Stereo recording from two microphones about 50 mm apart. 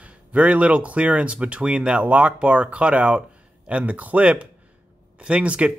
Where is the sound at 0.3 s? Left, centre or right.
Right.